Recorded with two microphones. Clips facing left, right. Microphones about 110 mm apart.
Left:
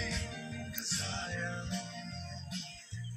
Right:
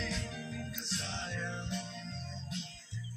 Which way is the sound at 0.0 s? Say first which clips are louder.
Right 1 dB; centre (ahead or behind).